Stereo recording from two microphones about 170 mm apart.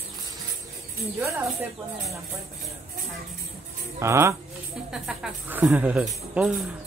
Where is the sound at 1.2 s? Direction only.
15° right (ahead or behind).